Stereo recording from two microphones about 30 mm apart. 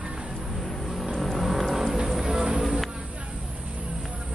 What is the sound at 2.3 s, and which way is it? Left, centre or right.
Music, right.